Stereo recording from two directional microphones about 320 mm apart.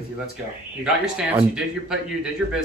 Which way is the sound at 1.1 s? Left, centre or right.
Centre.